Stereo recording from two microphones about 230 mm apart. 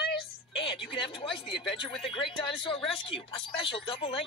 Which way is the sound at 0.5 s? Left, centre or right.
Left.